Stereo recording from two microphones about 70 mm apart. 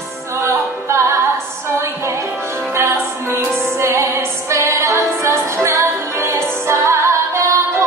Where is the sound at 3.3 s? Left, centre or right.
Right.